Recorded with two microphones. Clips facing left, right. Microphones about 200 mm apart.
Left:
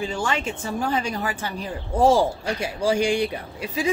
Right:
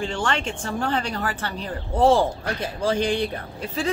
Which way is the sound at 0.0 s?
5° left (ahead or behind).